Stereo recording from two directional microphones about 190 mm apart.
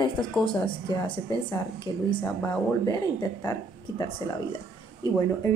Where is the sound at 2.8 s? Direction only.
20° left (ahead or behind).